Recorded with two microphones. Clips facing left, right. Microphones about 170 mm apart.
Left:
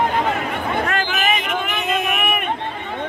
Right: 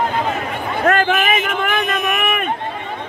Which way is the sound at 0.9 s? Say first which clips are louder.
Right 5 dB; 60° right (ahead or behind).